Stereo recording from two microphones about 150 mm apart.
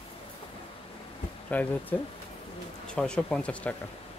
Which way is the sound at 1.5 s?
10° left (ahead or behind).